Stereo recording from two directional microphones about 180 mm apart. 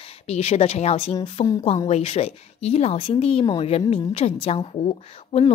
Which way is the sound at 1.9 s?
35° left (ahead or behind).